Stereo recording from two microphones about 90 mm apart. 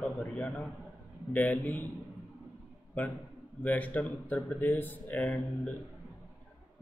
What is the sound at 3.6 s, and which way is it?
Speech, 15° left (ahead or behind).